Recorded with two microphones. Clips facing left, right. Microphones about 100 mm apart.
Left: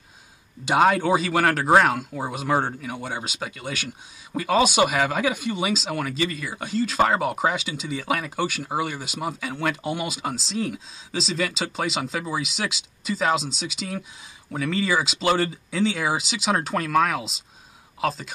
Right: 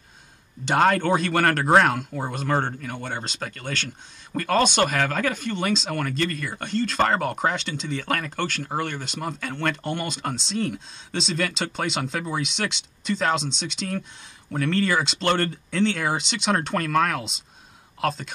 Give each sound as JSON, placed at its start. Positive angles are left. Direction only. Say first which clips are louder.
{"t": 0.7, "sound": "speech", "louder": "left 1 dB", "side_deg": 5}